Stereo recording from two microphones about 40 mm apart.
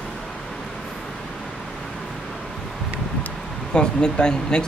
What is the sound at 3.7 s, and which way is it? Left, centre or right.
Speech, centre.